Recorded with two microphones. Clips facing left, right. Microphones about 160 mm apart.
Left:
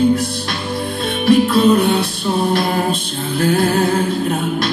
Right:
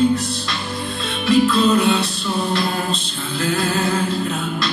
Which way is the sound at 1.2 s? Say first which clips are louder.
Left 3 dB; 55° left (ahead or behind).